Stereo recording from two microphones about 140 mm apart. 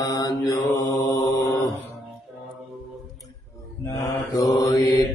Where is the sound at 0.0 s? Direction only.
25° left (ahead or behind).